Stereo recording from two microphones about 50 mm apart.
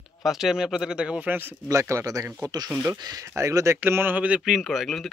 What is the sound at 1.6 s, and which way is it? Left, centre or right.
Speech, right.